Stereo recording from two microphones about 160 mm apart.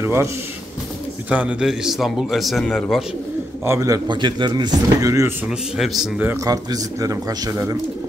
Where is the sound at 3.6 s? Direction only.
15° right (ahead or behind).